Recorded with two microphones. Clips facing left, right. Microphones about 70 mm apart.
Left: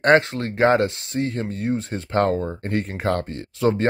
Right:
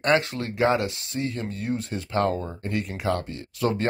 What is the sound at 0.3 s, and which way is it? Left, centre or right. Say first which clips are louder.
Speech: left 5 dB; left.